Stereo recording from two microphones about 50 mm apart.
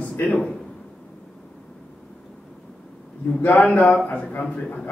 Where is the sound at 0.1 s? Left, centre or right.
Left.